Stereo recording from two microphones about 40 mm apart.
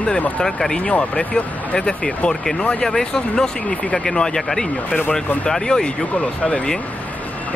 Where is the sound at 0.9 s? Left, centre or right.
Left.